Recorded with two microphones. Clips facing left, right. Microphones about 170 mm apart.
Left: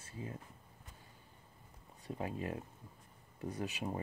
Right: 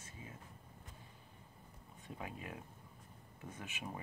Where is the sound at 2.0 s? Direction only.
40° left (ahead or behind).